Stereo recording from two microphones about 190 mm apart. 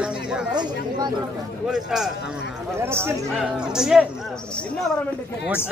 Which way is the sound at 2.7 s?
15° right (ahead or behind).